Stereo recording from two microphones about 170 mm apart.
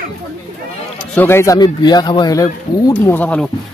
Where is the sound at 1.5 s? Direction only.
25° left (ahead or behind); by 3.5 s 10° left (ahead or behind).